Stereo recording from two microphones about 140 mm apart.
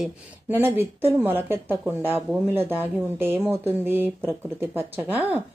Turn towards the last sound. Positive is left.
turn(degrees=-10)  # may be behind; listen again after turning